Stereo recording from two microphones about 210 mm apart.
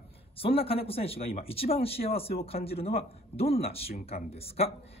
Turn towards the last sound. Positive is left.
turn(degrees=30)  # may be behind; listen again after turning